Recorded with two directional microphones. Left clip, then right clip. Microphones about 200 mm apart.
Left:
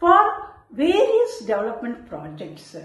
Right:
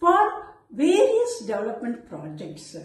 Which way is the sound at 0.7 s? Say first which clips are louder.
Left 1 dB; 10° right (ahead or behind).